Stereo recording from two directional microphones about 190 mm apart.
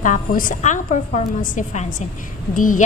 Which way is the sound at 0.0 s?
45° left (ahead or behind).